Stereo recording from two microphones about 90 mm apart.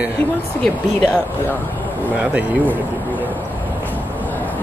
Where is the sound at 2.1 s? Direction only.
15° right (ahead or behind).